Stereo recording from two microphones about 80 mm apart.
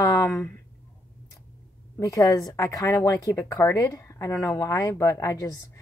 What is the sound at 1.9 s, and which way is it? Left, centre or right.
Speech, left.